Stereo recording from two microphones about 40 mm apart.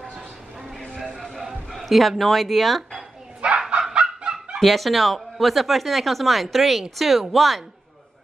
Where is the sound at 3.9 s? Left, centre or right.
Right.